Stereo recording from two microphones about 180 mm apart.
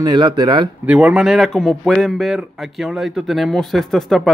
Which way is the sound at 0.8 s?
5° right (ahead or behind).